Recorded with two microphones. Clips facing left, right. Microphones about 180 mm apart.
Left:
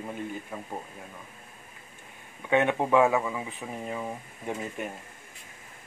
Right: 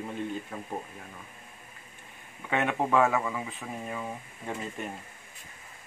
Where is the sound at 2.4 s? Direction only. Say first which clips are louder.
Left 4 dB; 15° left (ahead or behind).